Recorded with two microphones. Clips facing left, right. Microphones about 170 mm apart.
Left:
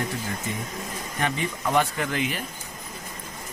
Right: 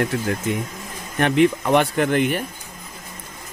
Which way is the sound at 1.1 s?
75° right (ahead or behind).